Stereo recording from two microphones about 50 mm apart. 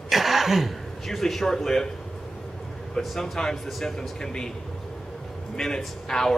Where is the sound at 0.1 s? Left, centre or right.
Centre.